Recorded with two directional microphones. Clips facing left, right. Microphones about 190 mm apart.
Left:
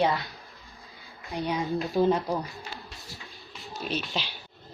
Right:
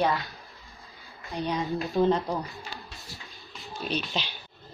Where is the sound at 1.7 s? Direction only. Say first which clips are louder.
Even; centre (ahead or behind).